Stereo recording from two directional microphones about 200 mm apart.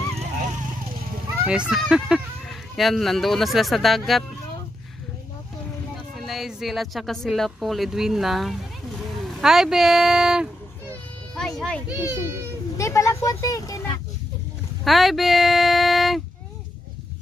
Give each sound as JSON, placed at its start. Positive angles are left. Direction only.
{"t": 0.1, "sound": "dog", "side_deg": -35}
{"t": 1.4, "sound": "speech", "side_deg": -5}
{"t": 6.1, "sound": "speech", "side_deg": 0}
{"t": 10.9, "sound": "children playing", "side_deg": 5}
{"t": 12.7, "sound": "speech", "side_deg": 15}
{"t": 14.9, "sound": "speech", "side_deg": 0}